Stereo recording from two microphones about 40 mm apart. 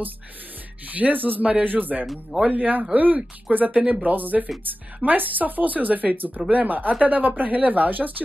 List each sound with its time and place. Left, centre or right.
0.8 s speech: right